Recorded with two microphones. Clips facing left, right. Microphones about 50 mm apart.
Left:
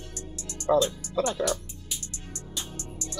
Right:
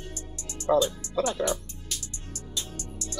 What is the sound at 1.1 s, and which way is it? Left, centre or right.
Speech, centre.